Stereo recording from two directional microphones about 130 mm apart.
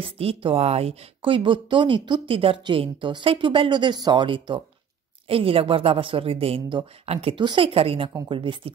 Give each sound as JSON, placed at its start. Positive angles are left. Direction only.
{"t": 0.0, "sound": "speech", "side_deg": -45}